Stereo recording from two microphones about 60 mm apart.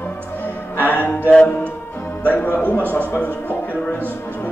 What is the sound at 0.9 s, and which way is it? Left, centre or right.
Music, left.